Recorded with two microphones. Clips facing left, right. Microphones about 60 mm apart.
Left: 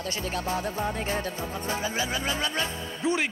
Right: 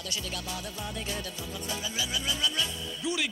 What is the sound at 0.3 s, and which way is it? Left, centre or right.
Speech, left.